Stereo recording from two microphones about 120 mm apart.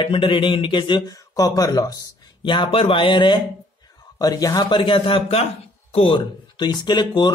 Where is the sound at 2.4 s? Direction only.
45° left (ahead or behind).